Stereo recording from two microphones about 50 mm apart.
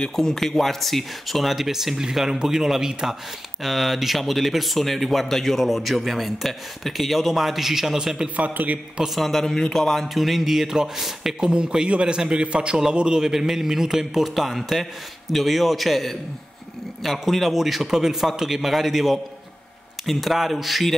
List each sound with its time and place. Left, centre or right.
0.0 s speech: centre
8.4 s a man's voice: right
9.0 s a man's voice: centre